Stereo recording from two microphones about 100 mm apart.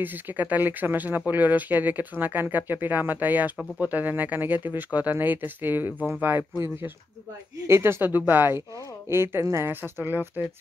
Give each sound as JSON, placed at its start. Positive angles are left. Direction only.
{"t": 0.0, "sound": "speech", "side_deg": -20}